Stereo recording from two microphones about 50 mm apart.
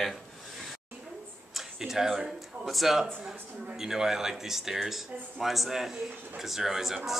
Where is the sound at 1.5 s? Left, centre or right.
Centre.